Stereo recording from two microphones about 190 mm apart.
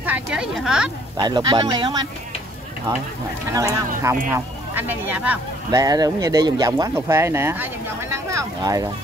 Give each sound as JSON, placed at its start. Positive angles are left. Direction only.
{"t": 0.0, "sound": "speech", "side_deg": -5}
{"t": 1.1, "sound": "speech", "side_deg": -20}
{"t": 3.5, "sound": "speech", "side_deg": -15}